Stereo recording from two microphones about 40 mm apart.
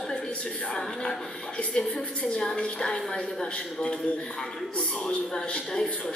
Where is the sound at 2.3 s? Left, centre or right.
Centre.